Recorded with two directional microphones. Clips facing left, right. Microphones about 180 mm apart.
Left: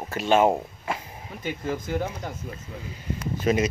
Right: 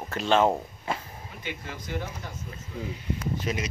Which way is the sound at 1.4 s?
45° left (ahead or behind).